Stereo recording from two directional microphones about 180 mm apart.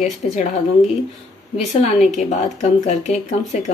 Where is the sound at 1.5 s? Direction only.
40° left (ahead or behind).